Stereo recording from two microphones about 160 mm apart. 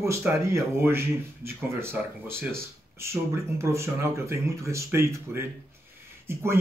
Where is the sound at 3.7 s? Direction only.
15° right (ahead or behind).